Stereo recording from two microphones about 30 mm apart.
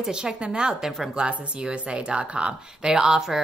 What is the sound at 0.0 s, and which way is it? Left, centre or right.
Speech, right.